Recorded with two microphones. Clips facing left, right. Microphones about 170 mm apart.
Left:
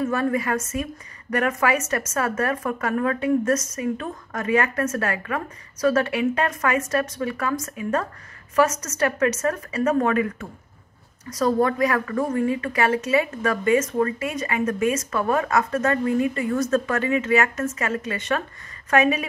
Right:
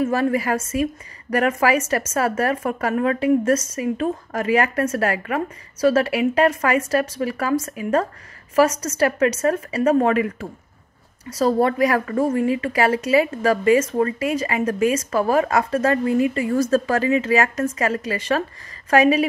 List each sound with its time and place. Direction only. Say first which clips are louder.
0.0 s a woman's voice: right 3 dB; 30° right (ahead or behind)